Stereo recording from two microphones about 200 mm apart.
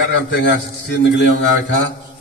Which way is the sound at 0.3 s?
60° left (ahead or behind).